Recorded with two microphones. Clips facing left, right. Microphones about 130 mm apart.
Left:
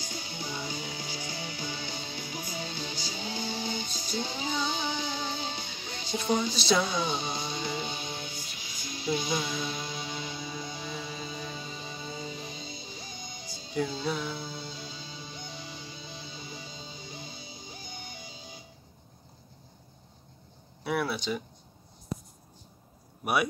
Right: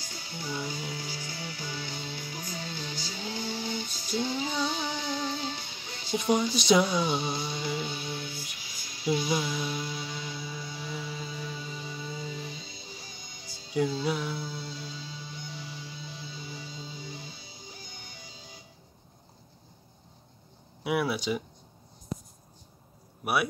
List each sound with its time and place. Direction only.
0.0 s music: 20° left (ahead or behind)
6.1 s speech: 15° right (ahead or behind)
7.0 s music: 25° left (ahead or behind)
14.0 s speech: 10° right (ahead or behind)
14.3 s music: 15° left (ahead or behind)
20.8 s a sound: 10° right (ahead or behind)
23.2 s a man's voice: centre (ahead or behind)